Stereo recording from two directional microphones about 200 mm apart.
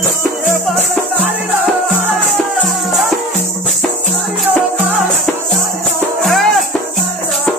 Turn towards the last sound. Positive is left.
turn(degrees=0)  # may be behind; listen again after turning